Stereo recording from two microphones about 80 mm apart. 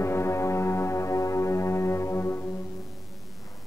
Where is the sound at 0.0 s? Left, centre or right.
Left.